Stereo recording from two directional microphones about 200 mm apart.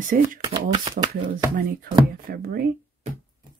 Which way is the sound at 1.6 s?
50° right (ahead or behind).